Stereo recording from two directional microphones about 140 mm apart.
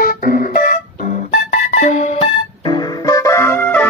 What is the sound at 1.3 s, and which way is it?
Music, 65° left (ahead or behind).